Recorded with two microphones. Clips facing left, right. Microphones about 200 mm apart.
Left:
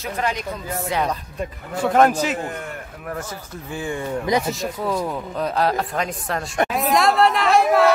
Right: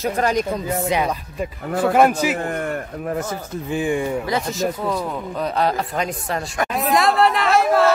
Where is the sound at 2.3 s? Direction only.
55° right (ahead or behind).